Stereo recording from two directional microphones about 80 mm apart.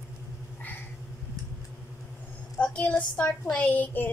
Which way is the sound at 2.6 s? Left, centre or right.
Centre.